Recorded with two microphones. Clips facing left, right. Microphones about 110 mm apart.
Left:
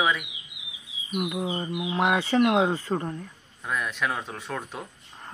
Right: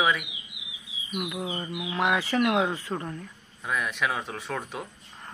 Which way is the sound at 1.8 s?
25° left (ahead or behind).